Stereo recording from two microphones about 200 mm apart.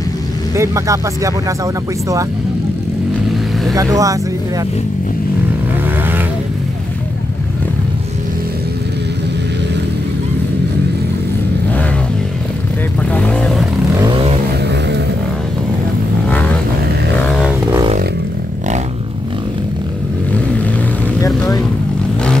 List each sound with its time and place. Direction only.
0.6 s speech: 15° right (ahead or behind)
3.7 s speech: 15° right (ahead or behind)
13.1 s vehicle: 5° left (ahead or behind)
14.6 s vehicle: 60° right (ahead or behind)